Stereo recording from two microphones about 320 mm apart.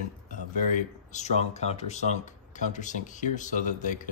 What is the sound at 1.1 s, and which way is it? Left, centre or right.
Speech, left.